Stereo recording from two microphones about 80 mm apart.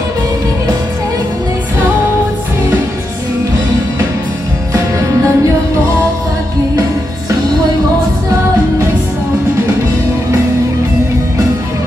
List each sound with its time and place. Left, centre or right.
4.7 s music: right